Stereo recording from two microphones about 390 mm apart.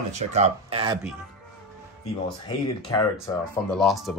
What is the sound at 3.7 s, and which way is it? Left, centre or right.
Speech, centre.